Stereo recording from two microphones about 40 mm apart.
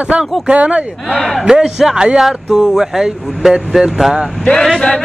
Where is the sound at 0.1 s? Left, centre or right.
Right.